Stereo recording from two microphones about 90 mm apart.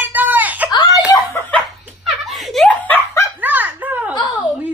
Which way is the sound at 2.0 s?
Centre (ahead or behind).